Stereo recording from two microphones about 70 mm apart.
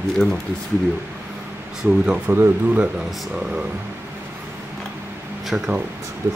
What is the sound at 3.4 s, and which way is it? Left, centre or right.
Speech, centre.